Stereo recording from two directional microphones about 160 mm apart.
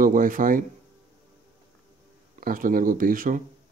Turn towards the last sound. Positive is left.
turn(degrees=-60)  # may be behind; listen again after turning